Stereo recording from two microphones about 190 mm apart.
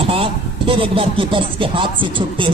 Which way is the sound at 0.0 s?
30° right (ahead or behind).